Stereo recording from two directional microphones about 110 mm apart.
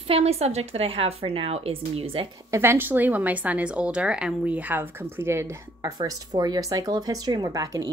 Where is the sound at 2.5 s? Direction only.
20° right (ahead or behind).